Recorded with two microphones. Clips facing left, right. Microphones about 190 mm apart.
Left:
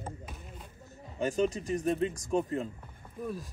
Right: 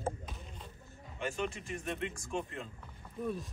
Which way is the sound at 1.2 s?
40° left (ahead or behind).